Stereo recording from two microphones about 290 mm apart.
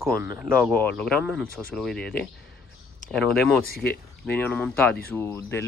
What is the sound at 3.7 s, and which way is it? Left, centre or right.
Speech, left.